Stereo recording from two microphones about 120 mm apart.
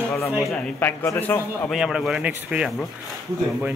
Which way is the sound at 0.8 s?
20° left (ahead or behind).